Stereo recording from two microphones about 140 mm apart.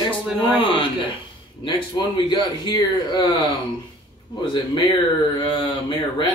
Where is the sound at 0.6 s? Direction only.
35° left (ahead or behind).